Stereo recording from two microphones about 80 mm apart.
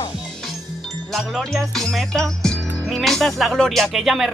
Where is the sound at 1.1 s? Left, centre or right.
Centre.